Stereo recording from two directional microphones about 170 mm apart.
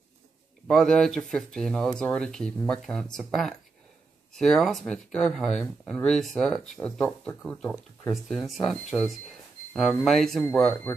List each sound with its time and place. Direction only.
0.7 s speech: 5° left (ahead or behind)
10.7 s speech: 15° left (ahead or behind)